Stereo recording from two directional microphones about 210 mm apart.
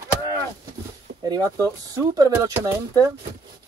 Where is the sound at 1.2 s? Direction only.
15° right (ahead or behind).